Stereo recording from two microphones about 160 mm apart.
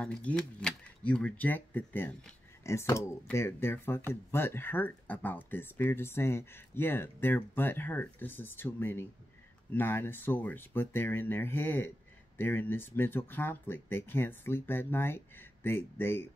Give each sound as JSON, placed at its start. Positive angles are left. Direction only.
{"t": 0.0, "sound": "speech", "side_deg": 5}